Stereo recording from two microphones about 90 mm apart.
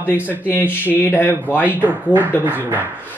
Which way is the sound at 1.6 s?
20° right (ahead or behind).